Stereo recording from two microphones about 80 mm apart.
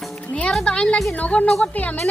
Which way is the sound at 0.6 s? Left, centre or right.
Centre.